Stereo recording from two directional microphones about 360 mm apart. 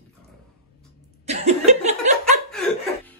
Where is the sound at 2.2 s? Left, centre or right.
Centre.